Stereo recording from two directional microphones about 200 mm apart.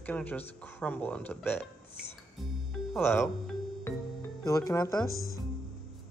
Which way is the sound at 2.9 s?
10° left (ahead or behind).